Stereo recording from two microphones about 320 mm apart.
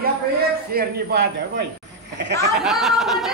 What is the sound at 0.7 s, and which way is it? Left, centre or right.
A man's voice, right.